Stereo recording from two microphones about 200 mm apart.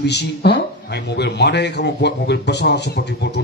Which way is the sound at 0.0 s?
55° left (ahead or behind).